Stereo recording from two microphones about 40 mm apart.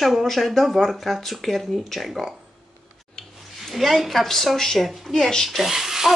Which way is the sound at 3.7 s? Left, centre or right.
Centre.